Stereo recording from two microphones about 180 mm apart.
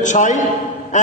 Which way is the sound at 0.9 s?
40° left (ahead or behind).